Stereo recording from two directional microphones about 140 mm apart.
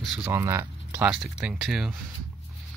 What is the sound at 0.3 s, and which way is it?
Speech, 20° right (ahead or behind).